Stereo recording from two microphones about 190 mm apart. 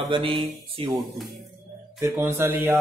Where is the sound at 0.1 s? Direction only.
25° right (ahead or behind).